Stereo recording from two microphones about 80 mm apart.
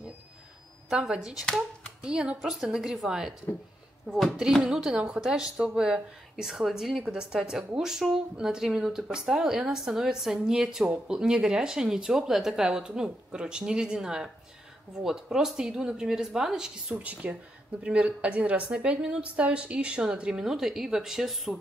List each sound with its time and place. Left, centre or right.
0.8 s a woman's voice: centre